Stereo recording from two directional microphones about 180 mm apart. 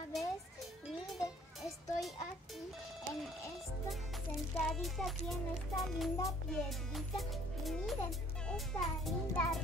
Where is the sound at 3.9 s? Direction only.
Centre (ahead or behind).